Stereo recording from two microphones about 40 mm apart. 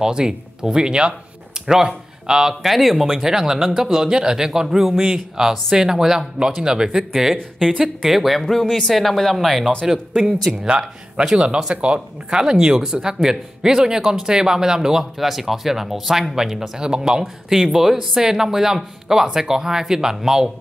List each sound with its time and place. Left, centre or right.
0.0 s speech: centre
2.6 s speech: centre
7.5 s speech: centre
7.8 s speech: centre
9.8 s speech: centre; by 12.4 s right
12.4 s speech: centre